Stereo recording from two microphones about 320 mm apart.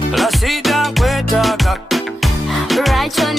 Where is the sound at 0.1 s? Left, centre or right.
Centre.